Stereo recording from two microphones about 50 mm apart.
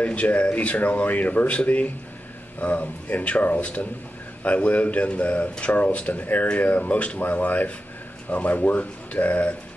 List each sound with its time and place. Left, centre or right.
0.0 s speech: left